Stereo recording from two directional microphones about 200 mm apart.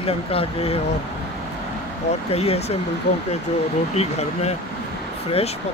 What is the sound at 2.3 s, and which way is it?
Speech, 30° left (ahead or behind).